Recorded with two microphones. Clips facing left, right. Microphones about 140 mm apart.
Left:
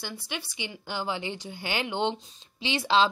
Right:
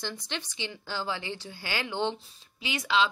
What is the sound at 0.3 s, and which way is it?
A woman's voice, 10° left (ahead or behind).